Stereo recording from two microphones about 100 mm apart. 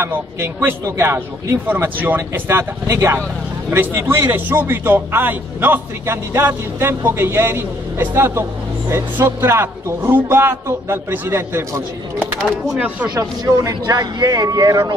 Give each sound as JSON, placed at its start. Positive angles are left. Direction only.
{"t": 0.0, "sound": "a man's voice", "side_deg": -25}
{"t": 12.7, "sound": "speech", "side_deg": -15}
{"t": 13.1, "sound": "speech", "side_deg": -45}